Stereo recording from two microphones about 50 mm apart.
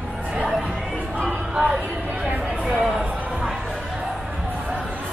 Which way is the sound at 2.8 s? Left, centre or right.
Centre.